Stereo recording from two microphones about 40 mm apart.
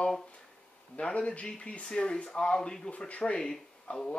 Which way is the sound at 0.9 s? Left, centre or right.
Left.